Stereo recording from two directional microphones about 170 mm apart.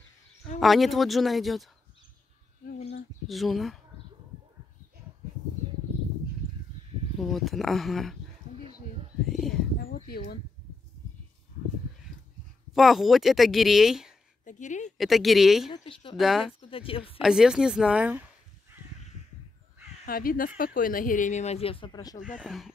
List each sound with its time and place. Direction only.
0.6 s speech: centre (ahead or behind)
3.3 s speech: centre (ahead or behind)
7.2 s speech: centre (ahead or behind)
9.8 s a sound: 65° left (ahead or behind)
12.7 s speech: centre (ahead or behind)
14.4 s a sound: 45° left (ahead or behind)
14.9 s speech: centre (ahead or behind)
15.7 s speech: 30° left (ahead or behind)
16.2 s speech: centre (ahead or behind)
16.6 s speech: 30° left (ahead or behind)
17.2 s speech: 5° right (ahead or behind)
20.1 s speech: 60° left (ahead or behind); by 22.2 s 25° left (ahead or behind)
22.4 s speech: centre (ahead or behind)